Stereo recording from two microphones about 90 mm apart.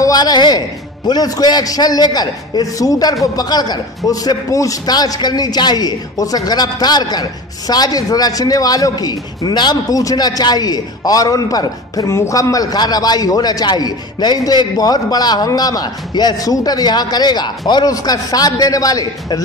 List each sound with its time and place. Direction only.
0.0 s a man's voice: 45° left (ahead or behind)